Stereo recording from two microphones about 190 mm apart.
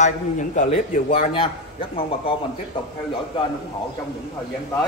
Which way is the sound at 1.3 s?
30° left (ahead or behind).